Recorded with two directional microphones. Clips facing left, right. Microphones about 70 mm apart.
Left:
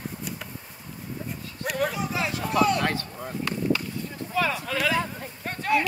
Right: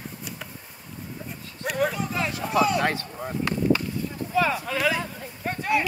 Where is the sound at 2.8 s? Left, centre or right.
Right.